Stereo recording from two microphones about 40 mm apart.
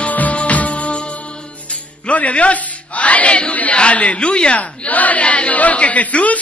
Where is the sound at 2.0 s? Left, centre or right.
Left.